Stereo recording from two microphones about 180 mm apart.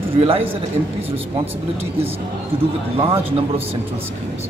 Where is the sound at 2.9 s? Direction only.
30° right (ahead or behind).